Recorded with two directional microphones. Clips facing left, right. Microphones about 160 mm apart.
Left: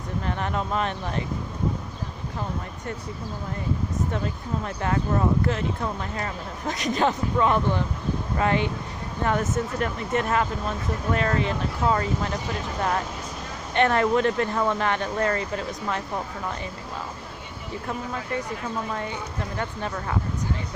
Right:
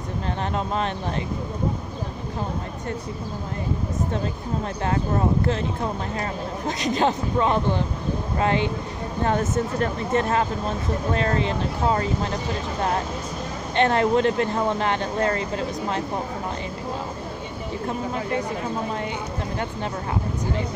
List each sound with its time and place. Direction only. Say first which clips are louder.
0.4 s speech: right 2 dB; 30° right (ahead or behind)
4.8 s speech: even; 30° right (ahead or behind)
6.8 s speech: right 1 dB; 30° right (ahead or behind)
13.7 s speech: right 1 dB; 30° right (ahead or behind)
17.8 s speech: right 4 dB; 25° right (ahead or behind)